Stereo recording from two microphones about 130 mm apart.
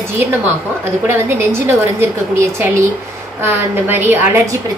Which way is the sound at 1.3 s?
15° right (ahead or behind).